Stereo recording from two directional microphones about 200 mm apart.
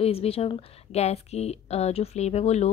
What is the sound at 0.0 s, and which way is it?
Speech, 30° left (ahead or behind).